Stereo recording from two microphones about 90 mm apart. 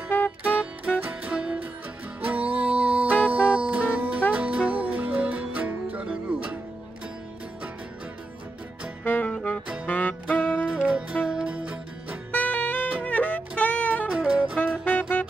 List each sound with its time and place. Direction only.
0.4 s music: 15° right (ahead or behind)
9.0 s music: 20° left (ahead or behind)
9.3 s saxophone: 10° left (ahead or behind)
9.8 s music: 20° left (ahead or behind)
10.6 s music: 10° right (ahead or behind)
12.3 s saxophone: 20° left (ahead or behind)
13.0 s music: 15° left (ahead or behind)
14.1 s music: 10° right (ahead or behind)
14.6 s music: 20° left (ahead or behind)